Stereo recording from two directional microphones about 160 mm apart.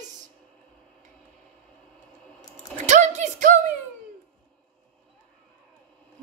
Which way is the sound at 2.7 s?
50° right (ahead or behind).